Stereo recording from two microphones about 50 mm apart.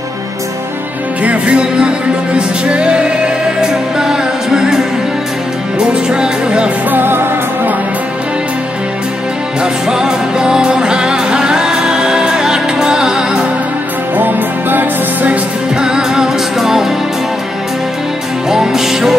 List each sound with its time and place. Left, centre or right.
1.2 s music: right
6.9 s music: right
9.6 s music: centre
14.1 s music: right
15.7 s music: centre
18.5 s music: centre